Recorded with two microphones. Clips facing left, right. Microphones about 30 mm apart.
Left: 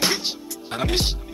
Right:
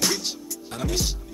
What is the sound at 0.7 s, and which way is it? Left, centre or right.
Speech, left.